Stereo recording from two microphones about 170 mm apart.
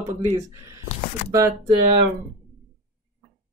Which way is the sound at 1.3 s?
20° right (ahead or behind).